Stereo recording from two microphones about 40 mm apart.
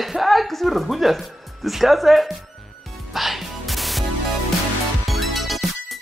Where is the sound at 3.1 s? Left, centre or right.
Centre.